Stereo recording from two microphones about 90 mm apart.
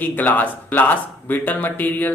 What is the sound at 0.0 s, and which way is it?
Speech, 20° left (ahead or behind).